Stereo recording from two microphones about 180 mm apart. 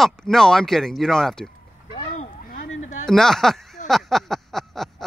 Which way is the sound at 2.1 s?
40° left (ahead or behind).